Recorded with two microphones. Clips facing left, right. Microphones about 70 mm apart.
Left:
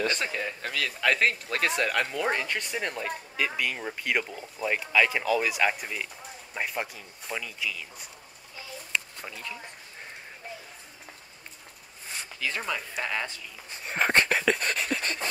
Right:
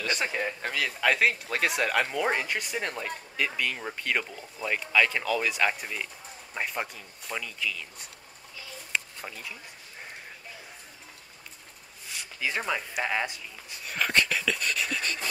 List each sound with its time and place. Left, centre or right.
0.2 s speech: right
1.0 s speech: centre
12.4 s speech: centre
13.8 s speech: left